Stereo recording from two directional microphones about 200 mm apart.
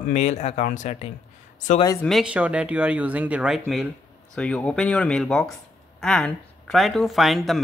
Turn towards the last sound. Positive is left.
turn(degrees=0)  # may be behind; listen again after turning